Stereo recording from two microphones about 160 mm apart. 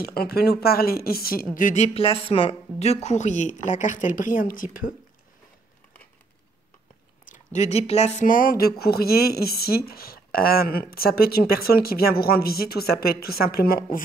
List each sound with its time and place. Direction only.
0.0 s speech: 75° left (ahead or behind)
7.2 s speech: 50° left (ahead or behind)